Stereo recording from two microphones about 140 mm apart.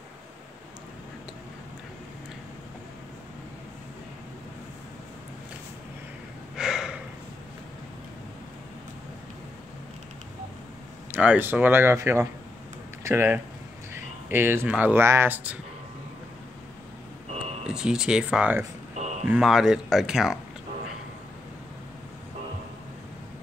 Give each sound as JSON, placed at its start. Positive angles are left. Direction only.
{"t": 6.5, "sound": "gasp", "side_deg": -5}
{"t": 11.1, "sound": "speech", "side_deg": -10}
{"t": 17.6, "sound": "speech", "side_deg": -5}
{"t": 18.9, "sound": "a sound", "side_deg": -55}
{"t": 19.2, "sound": "speech", "side_deg": -5}